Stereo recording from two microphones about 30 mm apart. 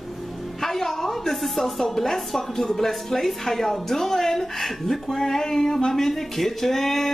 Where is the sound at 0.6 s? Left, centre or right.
Centre.